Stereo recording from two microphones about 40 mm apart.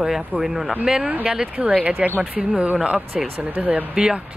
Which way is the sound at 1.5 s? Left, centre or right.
Right.